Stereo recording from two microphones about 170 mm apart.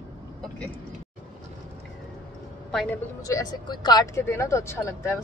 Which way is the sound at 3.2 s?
20° left (ahead or behind).